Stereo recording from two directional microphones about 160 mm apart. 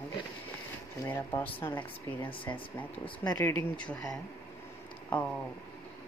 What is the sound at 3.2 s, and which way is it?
Speech, 20° left (ahead or behind).